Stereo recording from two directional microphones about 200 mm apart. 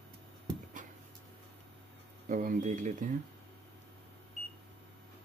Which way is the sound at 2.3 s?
45° right (ahead or behind).